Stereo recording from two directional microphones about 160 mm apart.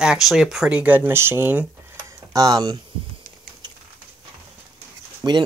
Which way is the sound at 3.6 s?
25° right (ahead or behind).